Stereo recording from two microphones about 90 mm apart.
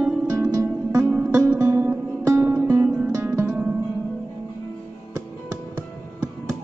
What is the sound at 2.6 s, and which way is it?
Music, 15° right (ahead or behind).